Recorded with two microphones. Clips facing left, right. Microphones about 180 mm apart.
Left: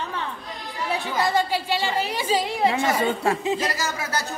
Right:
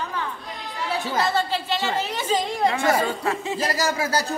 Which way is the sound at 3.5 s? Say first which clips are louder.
Right 3 dB; 35° right (ahead or behind).